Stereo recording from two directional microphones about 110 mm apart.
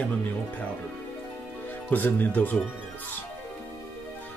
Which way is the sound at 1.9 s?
15° left (ahead or behind).